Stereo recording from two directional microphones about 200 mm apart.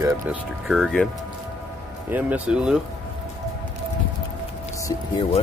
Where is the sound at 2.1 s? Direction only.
10° right (ahead or behind).